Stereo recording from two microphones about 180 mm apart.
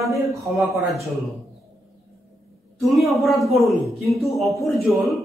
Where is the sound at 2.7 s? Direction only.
Centre (ahead or behind).